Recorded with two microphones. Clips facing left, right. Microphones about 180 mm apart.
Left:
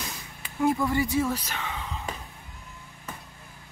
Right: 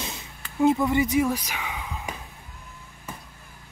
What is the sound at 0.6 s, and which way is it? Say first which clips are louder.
Speech: right 4 dB; 20° right (ahead or behind).